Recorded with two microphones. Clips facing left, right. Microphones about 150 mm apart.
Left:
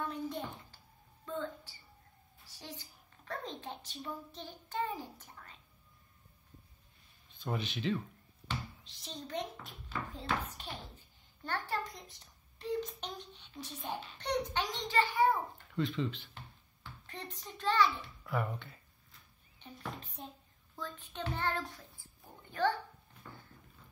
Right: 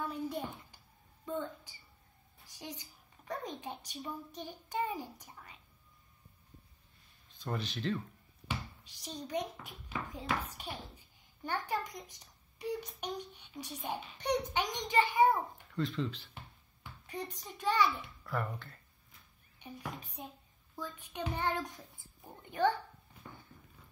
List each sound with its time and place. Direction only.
0.0 s a sound: 10° right (ahead or behind)
2.8 s a woman's voice: 15° right (ahead or behind)
7.3 s speech: centre (ahead or behind)
8.5 s a child's voice: 10° right (ahead or behind)
15.7 s speech: centre (ahead or behind)
17.0 s a woman's voice: 10° right (ahead or behind)
18.2 s speech: 5° left (ahead or behind)
19.6 s a child's voice: 10° right (ahead or behind)